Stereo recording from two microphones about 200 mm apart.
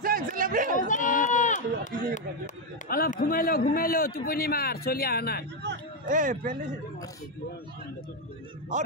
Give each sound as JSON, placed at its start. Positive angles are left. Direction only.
{"t": 0.0, "sound": "a sound", "side_deg": -45}
{"t": 0.7, "sound": "run", "side_deg": 40}
{"t": 3.7, "sound": "a man's voice", "side_deg": 45}
{"t": 6.0, "sound": "speech", "side_deg": -40}